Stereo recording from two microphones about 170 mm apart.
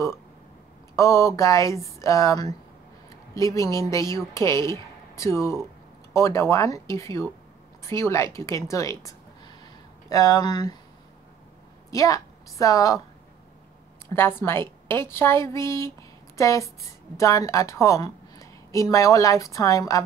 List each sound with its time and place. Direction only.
0.9 s a woman's voice: 15° left (ahead or behind)
11.9 s a woman's voice: 20° left (ahead or behind)
14.0 s a woman's voice: 15° left (ahead or behind)